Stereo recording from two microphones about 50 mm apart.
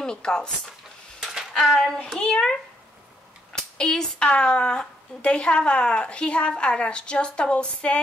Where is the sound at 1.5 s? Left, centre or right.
Centre.